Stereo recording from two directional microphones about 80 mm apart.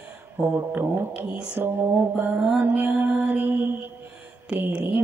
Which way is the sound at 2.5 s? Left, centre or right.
Right.